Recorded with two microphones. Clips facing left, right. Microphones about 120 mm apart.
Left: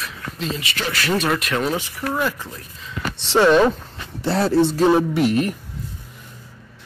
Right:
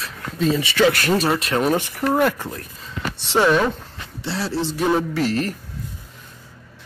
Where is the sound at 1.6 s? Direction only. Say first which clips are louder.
Right 4 dB; 60° right (ahead or behind).